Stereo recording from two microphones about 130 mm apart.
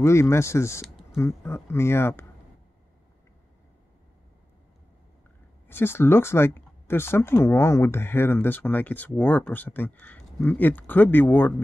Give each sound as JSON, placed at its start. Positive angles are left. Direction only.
{"t": 0.0, "sound": "speech", "side_deg": 20}
{"t": 5.7, "sound": "speech", "side_deg": 15}